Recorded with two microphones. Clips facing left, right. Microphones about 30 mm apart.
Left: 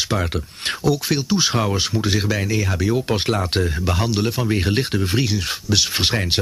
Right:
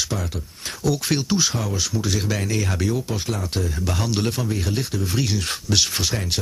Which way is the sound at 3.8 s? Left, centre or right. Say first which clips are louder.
Left 4 dB; left.